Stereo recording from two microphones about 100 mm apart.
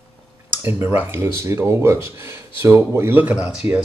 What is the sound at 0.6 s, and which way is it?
Speech, 20° right (ahead or behind).